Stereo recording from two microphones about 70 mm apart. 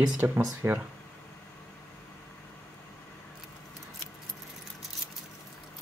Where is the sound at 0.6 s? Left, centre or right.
Right.